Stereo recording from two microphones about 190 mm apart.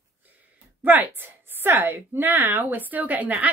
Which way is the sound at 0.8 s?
10° right (ahead or behind).